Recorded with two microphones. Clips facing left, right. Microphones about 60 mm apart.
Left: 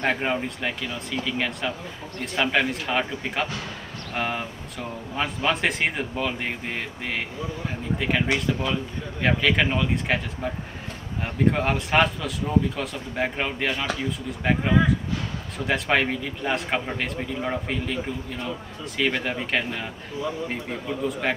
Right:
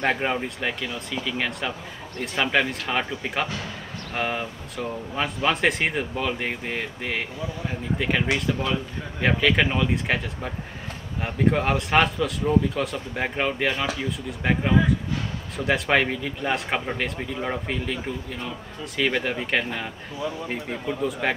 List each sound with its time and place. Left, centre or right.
0.0 s speech: centre
11.2 s speech: centre
18.9 s speech: centre
21.1 s speech: centre